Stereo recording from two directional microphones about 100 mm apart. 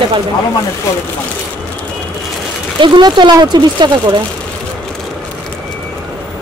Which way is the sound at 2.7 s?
50° right (ahead or behind).